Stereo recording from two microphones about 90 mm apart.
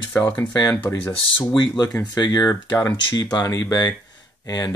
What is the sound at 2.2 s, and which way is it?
Speech, 45° left (ahead or behind).